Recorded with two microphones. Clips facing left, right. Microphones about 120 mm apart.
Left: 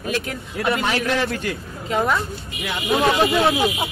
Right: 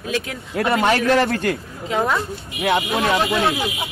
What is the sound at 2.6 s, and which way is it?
Speech, 65° right (ahead or behind).